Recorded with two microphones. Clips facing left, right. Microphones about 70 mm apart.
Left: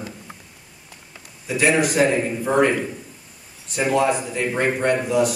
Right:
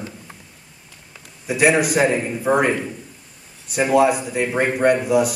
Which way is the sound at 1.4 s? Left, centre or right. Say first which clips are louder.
Right 2 dB; centre.